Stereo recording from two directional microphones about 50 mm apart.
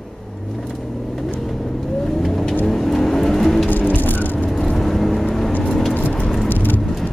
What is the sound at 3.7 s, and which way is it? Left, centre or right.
Vehicle, left.